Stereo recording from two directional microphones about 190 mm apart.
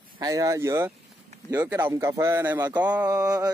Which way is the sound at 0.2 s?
20° right (ahead or behind).